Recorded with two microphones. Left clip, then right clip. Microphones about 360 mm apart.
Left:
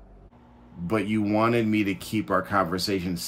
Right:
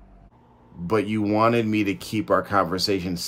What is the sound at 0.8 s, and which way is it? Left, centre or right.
Speech, centre.